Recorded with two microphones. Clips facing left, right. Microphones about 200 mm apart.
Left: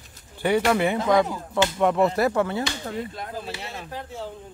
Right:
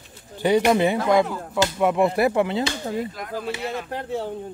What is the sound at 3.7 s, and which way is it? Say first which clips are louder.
Speech: right 7 dB; 65° right (ahead or behind).